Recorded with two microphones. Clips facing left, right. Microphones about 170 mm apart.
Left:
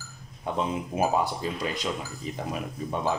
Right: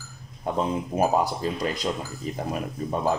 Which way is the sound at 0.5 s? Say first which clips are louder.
Right 3 dB; 45° right (ahead or behind).